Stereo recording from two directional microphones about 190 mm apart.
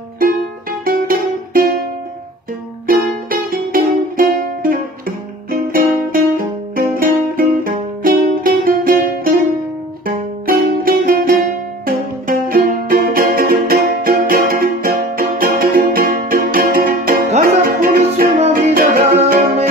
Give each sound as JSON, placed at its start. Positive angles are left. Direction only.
{"t": 0.2, "sound": "music", "side_deg": -50}
{"t": 2.9, "sound": "music", "side_deg": -50}